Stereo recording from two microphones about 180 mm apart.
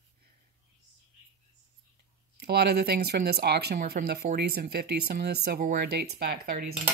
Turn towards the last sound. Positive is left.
turn(degrees=-60)  # may be behind; listen again after turning